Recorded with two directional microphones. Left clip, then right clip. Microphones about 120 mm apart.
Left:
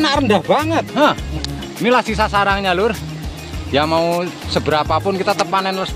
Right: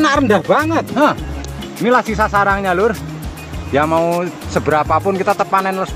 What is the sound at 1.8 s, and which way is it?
Speech, 20° right (ahead or behind).